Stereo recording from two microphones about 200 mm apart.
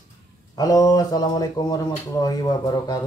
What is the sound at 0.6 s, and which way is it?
Speech, 20° left (ahead or behind).